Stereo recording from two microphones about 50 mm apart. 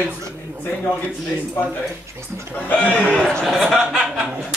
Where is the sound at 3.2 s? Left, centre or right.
Centre.